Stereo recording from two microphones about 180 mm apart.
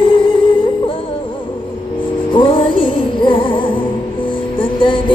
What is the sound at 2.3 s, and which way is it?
Music, 30° left (ahead or behind).